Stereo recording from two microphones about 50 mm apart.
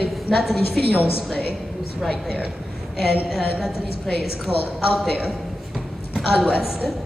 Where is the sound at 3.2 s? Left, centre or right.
Centre.